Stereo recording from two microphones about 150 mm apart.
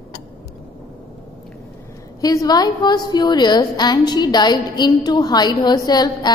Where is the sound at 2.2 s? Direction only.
25° left (ahead or behind).